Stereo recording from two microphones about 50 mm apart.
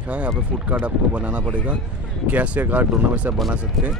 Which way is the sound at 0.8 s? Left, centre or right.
Right.